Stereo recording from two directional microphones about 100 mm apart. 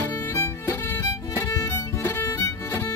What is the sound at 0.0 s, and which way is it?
Violin, 25° left (ahead or behind).